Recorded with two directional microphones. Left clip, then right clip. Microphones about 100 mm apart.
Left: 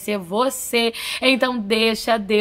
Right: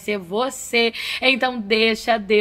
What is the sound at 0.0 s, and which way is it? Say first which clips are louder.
A woman's voice: left 2 dB; 40° left (ahead or behind).